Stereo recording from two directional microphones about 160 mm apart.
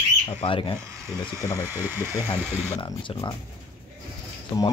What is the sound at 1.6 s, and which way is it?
Speech, 15° right (ahead or behind).